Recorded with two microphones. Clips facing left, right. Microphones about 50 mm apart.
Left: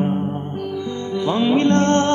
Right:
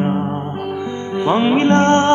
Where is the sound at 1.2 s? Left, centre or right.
Right.